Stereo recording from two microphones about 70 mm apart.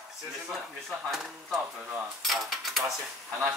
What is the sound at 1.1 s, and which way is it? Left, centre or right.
Speech, centre.